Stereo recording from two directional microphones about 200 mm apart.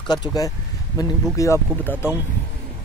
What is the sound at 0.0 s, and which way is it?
Speech, 20° left (ahead or behind).